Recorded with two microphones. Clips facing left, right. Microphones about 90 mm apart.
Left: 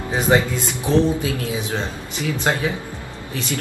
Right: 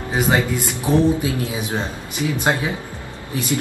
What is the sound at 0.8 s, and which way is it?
Speech, 20° right (ahead or behind).